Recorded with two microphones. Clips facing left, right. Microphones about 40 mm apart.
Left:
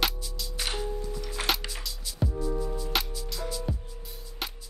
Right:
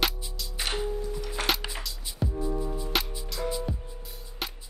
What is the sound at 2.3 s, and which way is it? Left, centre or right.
Music, right.